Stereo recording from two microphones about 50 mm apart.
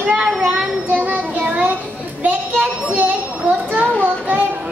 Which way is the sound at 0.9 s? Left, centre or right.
Right.